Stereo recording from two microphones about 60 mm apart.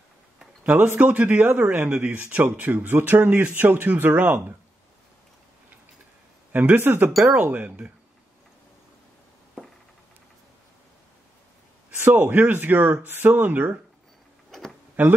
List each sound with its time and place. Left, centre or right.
0.7 s speech: right
6.5 s speech: right
12.0 s speech: right
13.1 s speech: right